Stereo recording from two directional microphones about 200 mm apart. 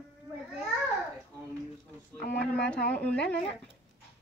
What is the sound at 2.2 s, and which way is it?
Speech, 55° left (ahead or behind).